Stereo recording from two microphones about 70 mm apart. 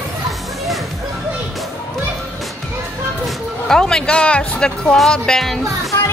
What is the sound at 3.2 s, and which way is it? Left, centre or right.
Speech, centre.